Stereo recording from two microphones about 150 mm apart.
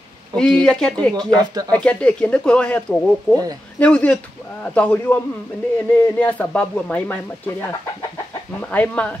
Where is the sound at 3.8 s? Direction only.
10° left (ahead or behind).